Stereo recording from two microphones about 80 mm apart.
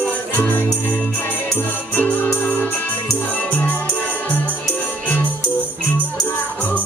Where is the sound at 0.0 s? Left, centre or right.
Left.